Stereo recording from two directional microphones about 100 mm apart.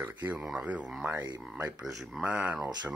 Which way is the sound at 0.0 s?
15° right (ahead or behind).